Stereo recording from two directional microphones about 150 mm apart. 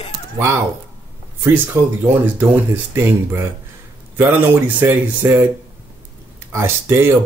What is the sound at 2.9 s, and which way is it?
Speech, 15° right (ahead or behind).